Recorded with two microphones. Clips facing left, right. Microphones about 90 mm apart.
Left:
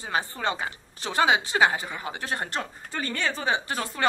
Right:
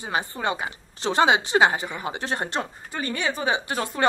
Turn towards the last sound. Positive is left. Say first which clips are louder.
# right 2 dB
turn(degrees=-15)  # may be behind; listen again after turning